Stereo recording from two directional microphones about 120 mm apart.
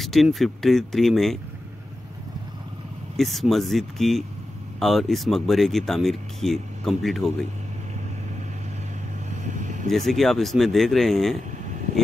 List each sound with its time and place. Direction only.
0.0 s speech: centre (ahead or behind)
3.2 s speech: centre (ahead or behind)
9.3 s vehicle: 90° right
9.8 s speech: centre (ahead or behind)